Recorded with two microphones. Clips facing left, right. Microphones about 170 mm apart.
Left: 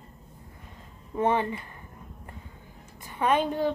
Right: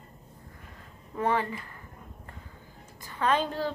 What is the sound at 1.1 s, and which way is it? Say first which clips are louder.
Speech: left 3 dB; 20° left (ahead or behind).